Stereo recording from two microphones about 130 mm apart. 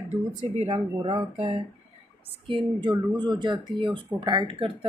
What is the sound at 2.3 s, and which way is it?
Speech, 45° right (ahead or behind).